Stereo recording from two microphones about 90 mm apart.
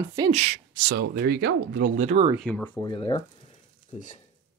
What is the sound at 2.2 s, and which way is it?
Speech, 90° right.